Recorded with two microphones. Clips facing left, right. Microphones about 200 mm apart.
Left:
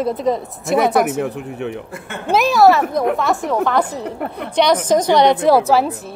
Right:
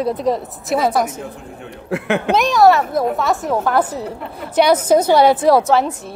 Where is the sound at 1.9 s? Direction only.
70° right (ahead or behind).